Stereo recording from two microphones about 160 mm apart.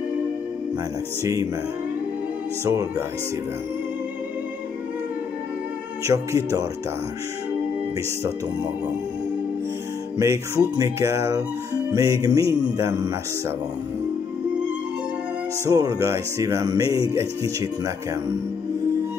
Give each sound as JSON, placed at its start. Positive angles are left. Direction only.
{"t": 1.2, "sound": "speech", "side_deg": -20}
{"t": 2.6, "sound": "speech", "side_deg": -20}
{"t": 6.0, "sound": "speech", "side_deg": -20}
{"t": 10.1, "sound": "music", "side_deg": -15}
{"t": 11.9, "sound": "speech", "side_deg": -20}
{"t": 15.6, "sound": "speech", "side_deg": -20}